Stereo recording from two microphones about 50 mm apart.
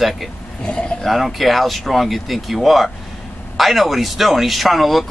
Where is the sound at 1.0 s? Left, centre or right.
Centre.